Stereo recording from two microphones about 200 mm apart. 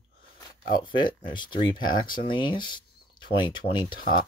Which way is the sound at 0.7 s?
25° left (ahead or behind).